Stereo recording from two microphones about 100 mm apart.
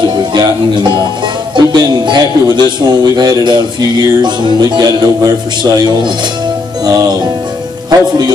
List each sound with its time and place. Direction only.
0.0 s music: 50° right (ahead or behind)
1.7 s a man's voice: 45° right (ahead or behind)
6.8 s music: 40° right (ahead or behind)